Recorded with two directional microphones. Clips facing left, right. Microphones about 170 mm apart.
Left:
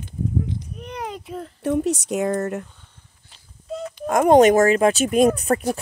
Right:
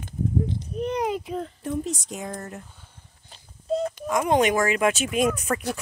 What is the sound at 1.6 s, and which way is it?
Speech, 70° left (ahead or behind).